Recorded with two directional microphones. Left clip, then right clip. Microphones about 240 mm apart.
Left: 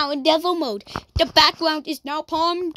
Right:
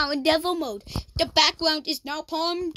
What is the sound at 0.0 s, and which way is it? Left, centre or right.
A woman's voice, centre.